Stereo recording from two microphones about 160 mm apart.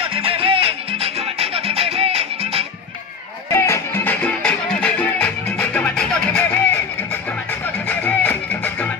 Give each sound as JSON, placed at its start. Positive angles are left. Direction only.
{"t": 0.0, "sound": "music", "side_deg": -35}
{"t": 3.5, "sound": "music", "side_deg": 15}
{"t": 7.9, "sound": "music", "side_deg": 10}